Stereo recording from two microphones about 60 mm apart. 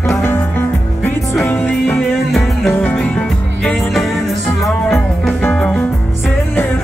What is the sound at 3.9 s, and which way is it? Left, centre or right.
Music, centre.